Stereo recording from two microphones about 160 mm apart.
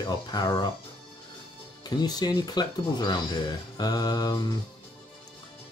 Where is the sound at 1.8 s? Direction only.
25° left (ahead or behind).